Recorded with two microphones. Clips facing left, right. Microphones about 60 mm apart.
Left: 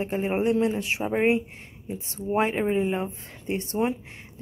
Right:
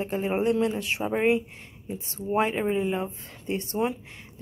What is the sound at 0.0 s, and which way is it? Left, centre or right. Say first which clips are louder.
Speech: left 1 dB; centre.